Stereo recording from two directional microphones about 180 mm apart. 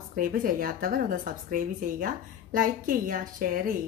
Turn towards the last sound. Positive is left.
turn(degrees=-50)  # may be behind; listen again after turning